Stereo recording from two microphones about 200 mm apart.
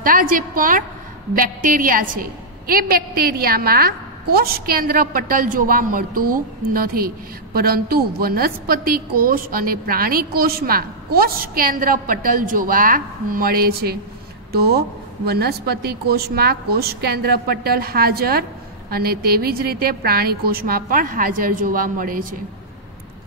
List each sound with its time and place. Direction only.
0.0 s a woman's voice: 45° right (ahead or behind)